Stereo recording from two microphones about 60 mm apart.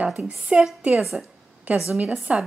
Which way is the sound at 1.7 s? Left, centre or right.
Right.